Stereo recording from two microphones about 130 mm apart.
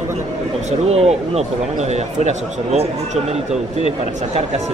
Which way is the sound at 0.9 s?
55° right (ahead or behind).